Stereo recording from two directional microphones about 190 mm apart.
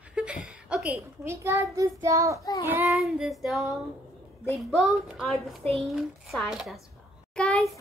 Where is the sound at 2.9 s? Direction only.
Centre (ahead or behind).